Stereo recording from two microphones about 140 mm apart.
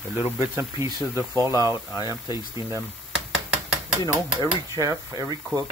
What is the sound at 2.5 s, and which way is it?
Speech, 20° right (ahead or behind).